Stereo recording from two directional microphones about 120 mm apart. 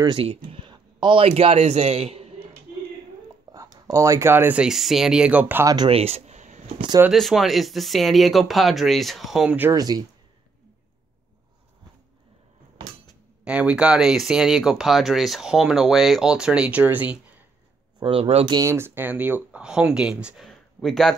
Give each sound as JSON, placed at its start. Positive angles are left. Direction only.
{"t": 0.0, "sound": "speech", "side_deg": -50}
{"t": 1.4, "sound": "a man's voice", "side_deg": -60}
{"t": 3.5, "sound": "a sound", "side_deg": -35}
{"t": 3.8, "sound": "speech", "side_deg": -25}
{"t": 5.9, "sound": "a sound", "side_deg": -55}
{"t": 7.1, "sound": "speech", "side_deg": 0}
{"t": 9.7, "sound": "speech", "side_deg": -30}
{"t": 13.4, "sound": "speech", "side_deg": -10}
{"t": 17.9, "sound": "speech", "side_deg": -45}
{"t": 18.5, "sound": "speech", "side_deg": -25}
{"t": 20.4, "sound": "a sound", "side_deg": 0}